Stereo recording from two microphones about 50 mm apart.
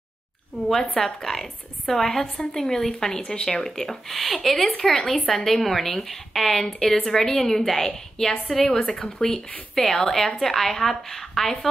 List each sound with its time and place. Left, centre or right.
0.9 s a woman's voice: centre